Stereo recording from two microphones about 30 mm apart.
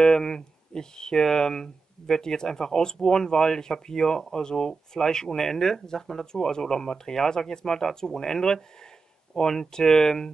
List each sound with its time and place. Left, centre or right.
0.0 s speech: left